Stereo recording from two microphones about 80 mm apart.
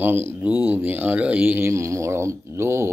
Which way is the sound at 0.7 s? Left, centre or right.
Right.